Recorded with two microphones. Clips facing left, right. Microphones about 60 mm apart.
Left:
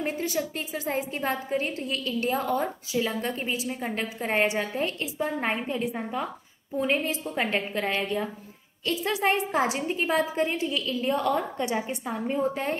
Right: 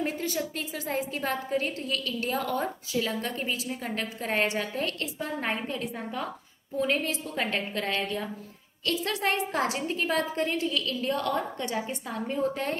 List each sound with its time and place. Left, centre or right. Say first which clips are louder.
0.0 s a woman's voice: left 2 dB; centre